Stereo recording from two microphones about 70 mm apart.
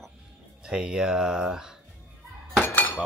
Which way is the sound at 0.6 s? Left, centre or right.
Centre.